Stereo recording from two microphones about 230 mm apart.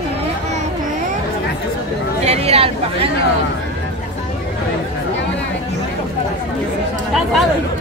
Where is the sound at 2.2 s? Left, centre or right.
Right.